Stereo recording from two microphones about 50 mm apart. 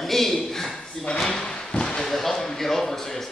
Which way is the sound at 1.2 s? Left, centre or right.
Centre.